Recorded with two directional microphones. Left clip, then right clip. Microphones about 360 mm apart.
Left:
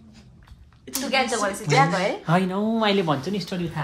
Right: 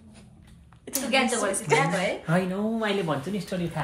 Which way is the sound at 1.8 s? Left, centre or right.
Centre.